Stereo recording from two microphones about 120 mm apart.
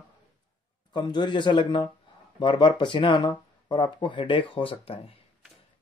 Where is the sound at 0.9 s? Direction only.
40° left (ahead or behind).